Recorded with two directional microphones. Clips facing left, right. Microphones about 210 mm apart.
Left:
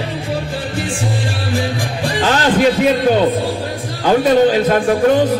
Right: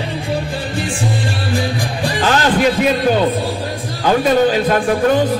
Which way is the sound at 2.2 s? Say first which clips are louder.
Even; 25° left (ahead or behind).